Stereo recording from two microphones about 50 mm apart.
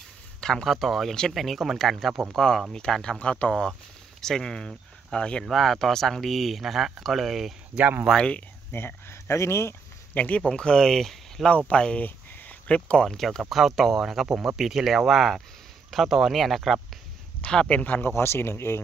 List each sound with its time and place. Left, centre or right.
0.4 s speech: centre
4.2 s speech: centre
5.4 s speech: centre
8.7 s speech: left
10.1 s speech: left
10.4 s speech: centre
10.8 s speech: centre
11.5 s speech: left
12.0 s a sound: left
12.6 s speech: left
13.0 s speech: centre
17.5 s speech: centre
17.7 s speech: left
18.1 s speech: left